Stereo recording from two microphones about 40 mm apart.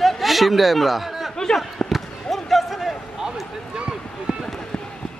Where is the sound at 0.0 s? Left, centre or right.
Centre.